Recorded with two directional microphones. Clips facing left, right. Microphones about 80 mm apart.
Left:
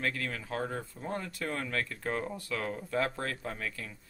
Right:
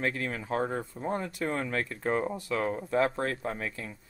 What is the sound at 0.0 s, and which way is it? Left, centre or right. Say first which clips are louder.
Speech: right 3 dB; right.